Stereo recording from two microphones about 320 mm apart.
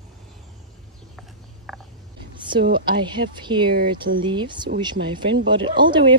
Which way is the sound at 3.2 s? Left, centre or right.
Right.